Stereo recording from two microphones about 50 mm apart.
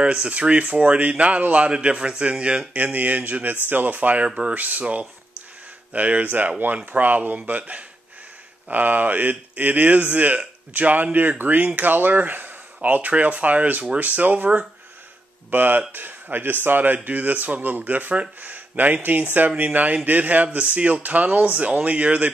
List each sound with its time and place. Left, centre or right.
0.0 s speech: right
2.7 s speech: right